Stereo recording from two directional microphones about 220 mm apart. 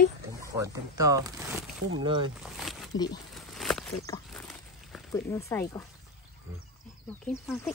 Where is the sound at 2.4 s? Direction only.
Centre (ahead or behind).